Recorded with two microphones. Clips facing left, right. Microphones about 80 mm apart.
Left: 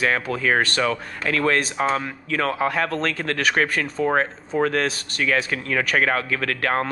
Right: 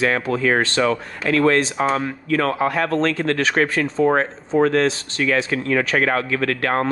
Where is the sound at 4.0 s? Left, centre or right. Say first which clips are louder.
Right 4 dB; right.